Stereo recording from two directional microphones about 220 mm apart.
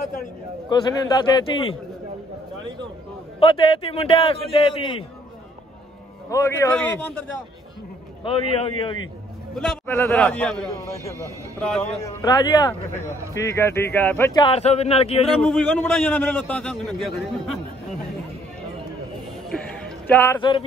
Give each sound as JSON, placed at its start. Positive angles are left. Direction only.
{"t": 0.7, "sound": "a man's voice", "side_deg": 20}
{"t": 3.3, "sound": "a man's voice", "side_deg": 25}
{"t": 6.3, "sound": "a man's voice", "side_deg": 15}
{"t": 8.2, "sound": "a man's voice", "side_deg": 25}
{"t": 9.6, "sound": "a man's voice", "side_deg": 10}
{"t": 15.4, "sound": "a man's voice", "side_deg": 5}
{"t": 19.5, "sound": "music", "side_deg": 5}